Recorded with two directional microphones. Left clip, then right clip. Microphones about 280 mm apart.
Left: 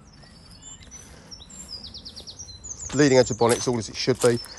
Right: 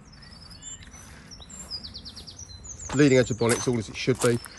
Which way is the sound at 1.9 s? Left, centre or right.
Left.